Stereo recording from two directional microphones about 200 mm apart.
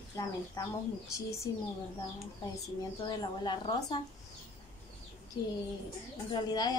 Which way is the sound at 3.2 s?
20° left (ahead or behind).